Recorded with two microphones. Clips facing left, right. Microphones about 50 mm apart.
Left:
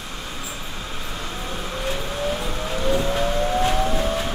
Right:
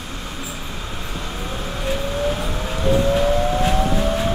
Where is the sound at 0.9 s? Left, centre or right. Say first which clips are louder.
Right 1 dB; centre.